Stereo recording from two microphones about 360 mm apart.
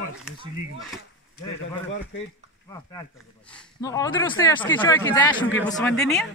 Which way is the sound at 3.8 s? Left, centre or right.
Centre.